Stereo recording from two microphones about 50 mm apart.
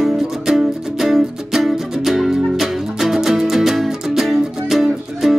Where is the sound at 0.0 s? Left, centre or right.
Centre.